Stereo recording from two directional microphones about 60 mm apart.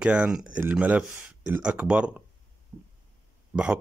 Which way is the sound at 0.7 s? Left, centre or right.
Right.